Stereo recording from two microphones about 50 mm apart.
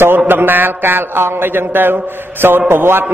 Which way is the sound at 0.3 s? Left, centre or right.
Right.